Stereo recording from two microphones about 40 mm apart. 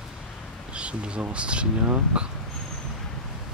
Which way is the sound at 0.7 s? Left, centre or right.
Right.